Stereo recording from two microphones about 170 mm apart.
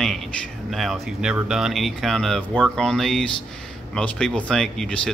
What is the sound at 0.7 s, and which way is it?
Speech, centre (ahead or behind).